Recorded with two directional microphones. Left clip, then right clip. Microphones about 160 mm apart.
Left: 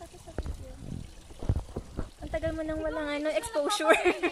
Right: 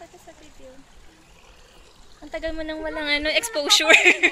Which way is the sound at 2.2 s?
30° left (ahead or behind).